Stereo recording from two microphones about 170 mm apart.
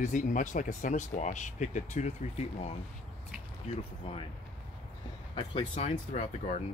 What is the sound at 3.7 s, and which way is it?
Speech, 35° left (ahead or behind).